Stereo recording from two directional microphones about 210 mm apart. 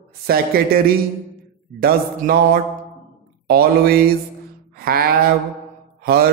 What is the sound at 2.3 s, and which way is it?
Speech, 45° right (ahead or behind).